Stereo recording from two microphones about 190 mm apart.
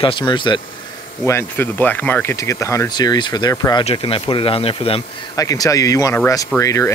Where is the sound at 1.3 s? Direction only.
10° left (ahead or behind).